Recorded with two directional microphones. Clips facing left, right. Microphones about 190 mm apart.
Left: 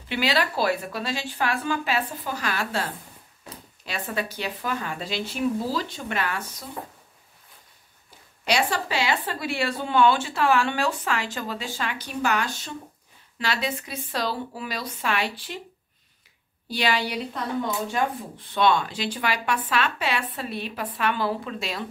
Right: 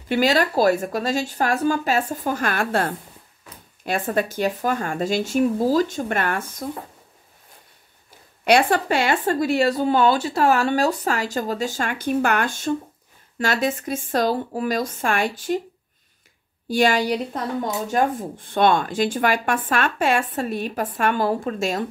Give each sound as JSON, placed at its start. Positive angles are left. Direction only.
{"t": 0.1, "sound": "a woman's voice", "side_deg": -45}
{"t": 8.5, "sound": "a woman's voice", "side_deg": -55}
{"t": 16.6, "sound": "a woman's voice", "side_deg": -45}